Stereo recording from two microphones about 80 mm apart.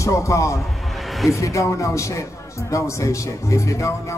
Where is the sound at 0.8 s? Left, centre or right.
Centre.